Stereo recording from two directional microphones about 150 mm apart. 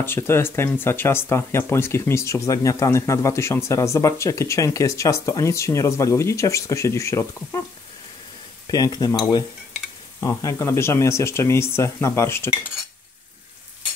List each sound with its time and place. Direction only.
0.0 s speech: 15° left (ahead or behind)
8.6 s speech: 25° left (ahead or behind)
10.2 s speech: 20° left (ahead or behind)